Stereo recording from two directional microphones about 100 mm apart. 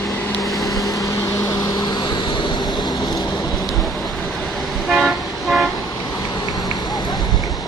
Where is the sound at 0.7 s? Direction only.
35° left (ahead or behind).